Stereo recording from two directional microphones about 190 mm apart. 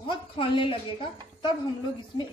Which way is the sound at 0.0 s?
25° left (ahead or behind).